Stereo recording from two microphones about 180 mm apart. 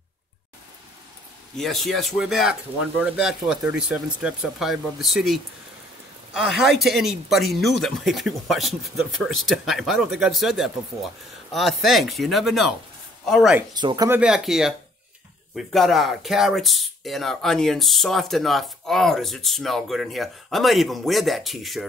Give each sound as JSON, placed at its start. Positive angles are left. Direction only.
{"t": 1.6, "sound": "speech", "side_deg": 0}
{"t": 13.7, "sound": "speech", "side_deg": -20}
{"t": 14.2, "sound": "speech", "side_deg": -5}